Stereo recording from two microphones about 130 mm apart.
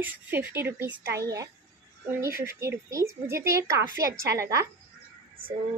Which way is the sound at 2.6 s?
25° right (ahead or behind).